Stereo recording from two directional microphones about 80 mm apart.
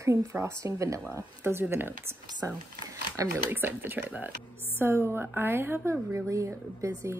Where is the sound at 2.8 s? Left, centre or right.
Right.